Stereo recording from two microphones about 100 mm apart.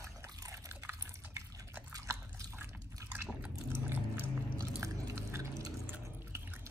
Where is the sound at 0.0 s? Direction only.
30° right (ahead or behind).